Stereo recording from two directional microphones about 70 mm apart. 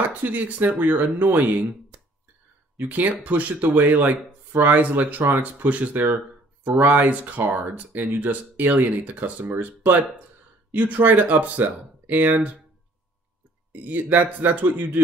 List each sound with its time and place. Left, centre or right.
0.0 s speech: right
13.7 s speech: right